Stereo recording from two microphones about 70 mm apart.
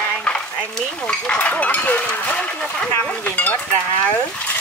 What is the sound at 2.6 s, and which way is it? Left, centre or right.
Speech, centre.